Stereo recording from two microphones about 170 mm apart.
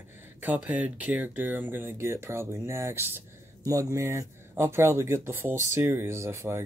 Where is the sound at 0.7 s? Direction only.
10° right (ahead or behind).